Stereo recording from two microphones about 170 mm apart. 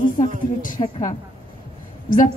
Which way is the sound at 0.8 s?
35° left (ahead or behind).